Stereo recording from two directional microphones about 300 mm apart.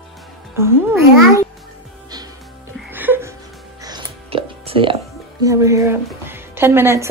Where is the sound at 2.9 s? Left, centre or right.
Centre.